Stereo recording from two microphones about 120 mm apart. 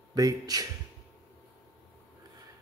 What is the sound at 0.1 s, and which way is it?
Speech, 30° right (ahead or behind).